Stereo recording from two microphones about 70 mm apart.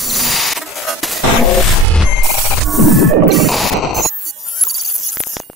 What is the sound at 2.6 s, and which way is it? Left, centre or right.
Music, centre.